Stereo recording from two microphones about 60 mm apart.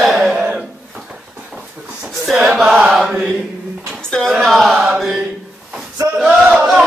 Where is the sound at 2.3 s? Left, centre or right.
Centre.